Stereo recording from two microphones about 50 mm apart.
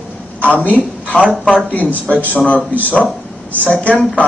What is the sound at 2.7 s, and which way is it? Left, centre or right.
A man's voice, left.